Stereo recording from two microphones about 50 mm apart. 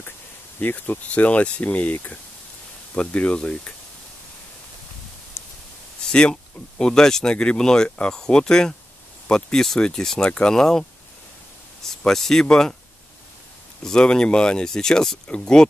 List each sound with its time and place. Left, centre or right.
0.6 s speech: left
6.0 s speech: centre
12.1 s speech: centre
13.8 s speech: centre